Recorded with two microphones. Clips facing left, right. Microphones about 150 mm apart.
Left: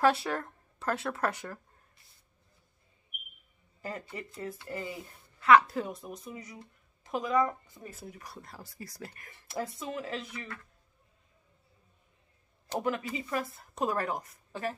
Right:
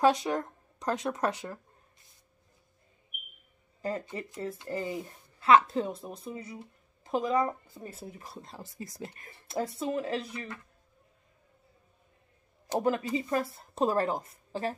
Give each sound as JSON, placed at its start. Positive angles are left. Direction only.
{"t": 0.0, "sound": "speech", "side_deg": -15}
{"t": 4.0, "sound": "speech", "side_deg": -20}
{"t": 12.8, "sound": "speech", "side_deg": -35}